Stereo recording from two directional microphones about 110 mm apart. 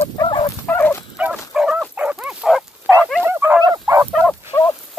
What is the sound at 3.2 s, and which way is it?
Dog, 20° right (ahead or behind).